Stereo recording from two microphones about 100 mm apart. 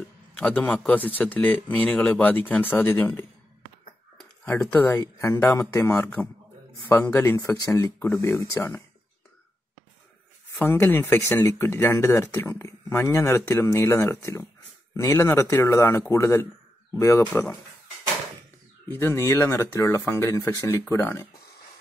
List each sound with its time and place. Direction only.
0.4 s speech: 10° left (ahead or behind)
4.6 s speech: 20° left (ahead or behind)
10.6 s speech: 20° left (ahead or behind)
17.3 s speech: 15° left (ahead or behind)
18.9 s speech: 25° left (ahead or behind)